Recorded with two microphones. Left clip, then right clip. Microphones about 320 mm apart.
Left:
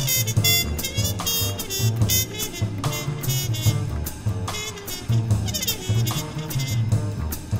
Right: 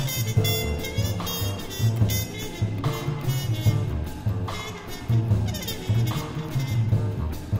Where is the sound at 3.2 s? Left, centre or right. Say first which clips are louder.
Left 4 dB; centre.